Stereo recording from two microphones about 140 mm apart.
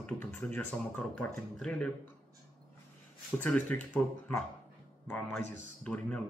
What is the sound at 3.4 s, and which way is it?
Speech, 10° left (ahead or behind).